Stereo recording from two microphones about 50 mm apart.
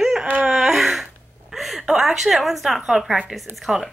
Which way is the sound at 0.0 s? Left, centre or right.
Centre.